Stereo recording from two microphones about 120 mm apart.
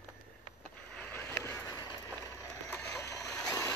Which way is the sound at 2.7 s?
10° left (ahead or behind).